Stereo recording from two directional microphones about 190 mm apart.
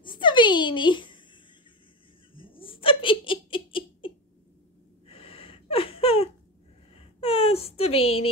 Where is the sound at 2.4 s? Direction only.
30° left (ahead or behind).